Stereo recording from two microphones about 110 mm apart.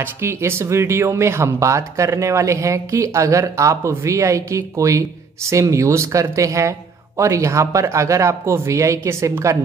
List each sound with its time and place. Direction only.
0.0 s speech: 25° right (ahead or behind)